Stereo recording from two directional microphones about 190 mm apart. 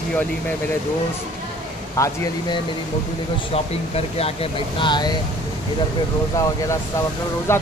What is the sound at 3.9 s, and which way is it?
Speech, 30° left (ahead or behind).